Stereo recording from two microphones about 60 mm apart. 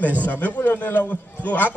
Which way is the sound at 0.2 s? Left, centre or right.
Left.